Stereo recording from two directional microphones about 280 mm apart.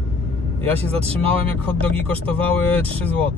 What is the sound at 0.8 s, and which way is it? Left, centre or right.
Speech, right.